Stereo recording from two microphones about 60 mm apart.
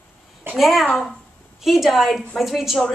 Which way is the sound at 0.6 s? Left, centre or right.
Centre.